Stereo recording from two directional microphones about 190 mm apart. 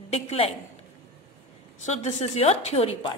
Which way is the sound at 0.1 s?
30° left (ahead or behind).